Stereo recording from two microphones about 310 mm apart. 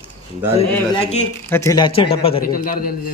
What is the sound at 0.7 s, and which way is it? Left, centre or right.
Speech, centre.